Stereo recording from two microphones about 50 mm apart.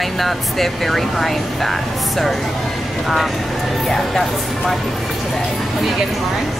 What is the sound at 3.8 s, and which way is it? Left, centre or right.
Speech, centre.